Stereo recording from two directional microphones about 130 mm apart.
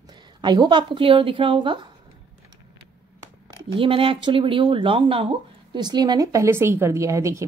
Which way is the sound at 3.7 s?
45° right (ahead or behind).